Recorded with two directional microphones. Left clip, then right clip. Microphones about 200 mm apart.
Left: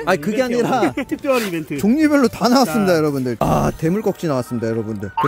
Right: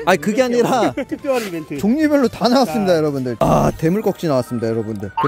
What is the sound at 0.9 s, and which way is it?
Speech, 35° left (ahead or behind).